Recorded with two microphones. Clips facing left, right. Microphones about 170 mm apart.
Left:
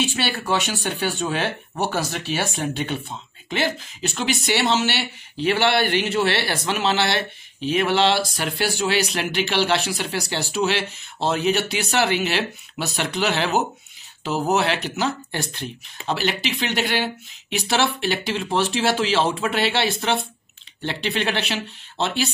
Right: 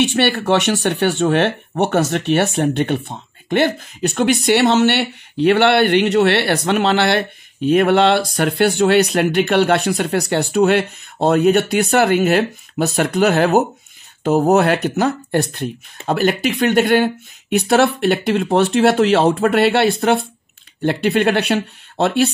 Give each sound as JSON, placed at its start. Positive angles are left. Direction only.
{"t": 0.0, "sound": "speech", "side_deg": -60}